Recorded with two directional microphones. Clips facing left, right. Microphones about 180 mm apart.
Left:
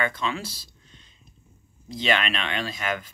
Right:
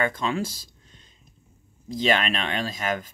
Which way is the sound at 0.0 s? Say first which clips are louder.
Right 3 dB; 45° right (ahead or behind).